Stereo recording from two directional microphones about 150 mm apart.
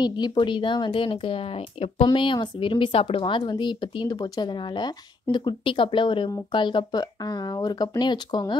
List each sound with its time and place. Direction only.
0.0 s speech: 30° left (ahead or behind)